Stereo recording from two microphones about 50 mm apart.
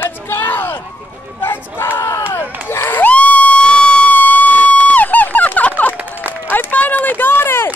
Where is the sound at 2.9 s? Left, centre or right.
Left.